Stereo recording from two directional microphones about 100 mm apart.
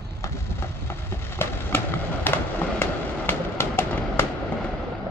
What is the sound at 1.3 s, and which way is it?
Fireworks, 20° left (ahead or behind).